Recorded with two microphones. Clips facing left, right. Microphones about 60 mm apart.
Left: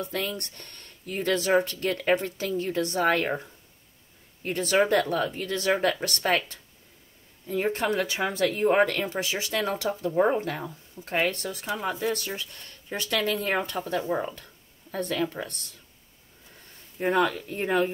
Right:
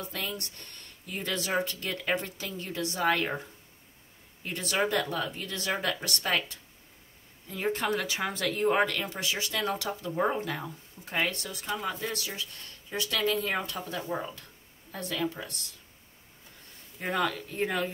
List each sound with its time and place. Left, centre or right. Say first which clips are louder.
0.0 s speech: left 5 dB; left
4.4 s speech: left 6 dB; left
17.0 s speech: left 6 dB; left